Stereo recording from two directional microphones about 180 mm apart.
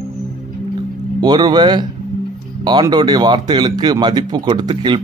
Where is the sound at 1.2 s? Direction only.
25° right (ahead or behind).